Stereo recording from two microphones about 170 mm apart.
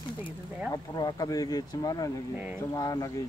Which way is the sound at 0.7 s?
25° left (ahead or behind).